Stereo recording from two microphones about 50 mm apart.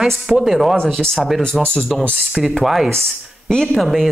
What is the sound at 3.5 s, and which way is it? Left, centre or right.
Speech, centre.